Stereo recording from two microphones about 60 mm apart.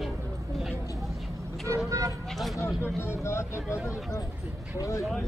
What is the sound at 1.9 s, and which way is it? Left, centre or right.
Speech, right.